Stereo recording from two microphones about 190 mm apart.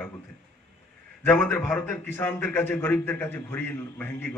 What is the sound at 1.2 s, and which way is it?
A man's voice, 10° left (ahead or behind).